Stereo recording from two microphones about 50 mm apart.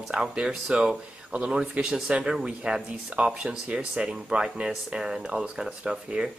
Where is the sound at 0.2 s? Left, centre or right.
Centre.